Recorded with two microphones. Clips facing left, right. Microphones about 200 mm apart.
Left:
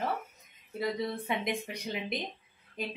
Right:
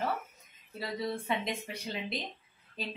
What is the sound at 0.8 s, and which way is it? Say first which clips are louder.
Speech: left 3 dB; 15° left (ahead or behind).